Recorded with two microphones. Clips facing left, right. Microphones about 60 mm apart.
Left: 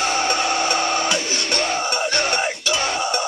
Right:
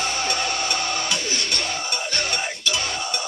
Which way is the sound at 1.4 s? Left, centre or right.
Left.